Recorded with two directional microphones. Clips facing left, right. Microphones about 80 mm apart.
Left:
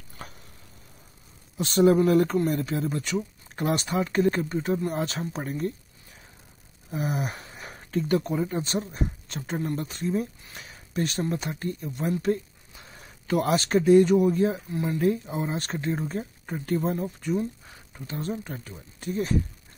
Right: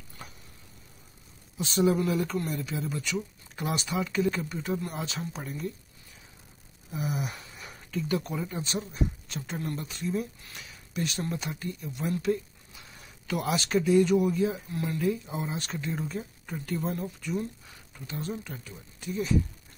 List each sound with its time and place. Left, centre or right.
1.6 s speech: left
6.9 s speech: left
10.5 s a sound: left
11.2 s speech: left
14.7 s speech: left
15.3 s speech: left
17.9 s speech: left